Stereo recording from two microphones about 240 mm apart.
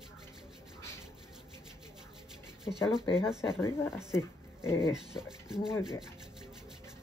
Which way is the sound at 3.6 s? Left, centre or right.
Centre.